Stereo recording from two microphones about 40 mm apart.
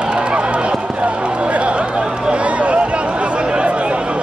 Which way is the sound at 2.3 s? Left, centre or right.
Right.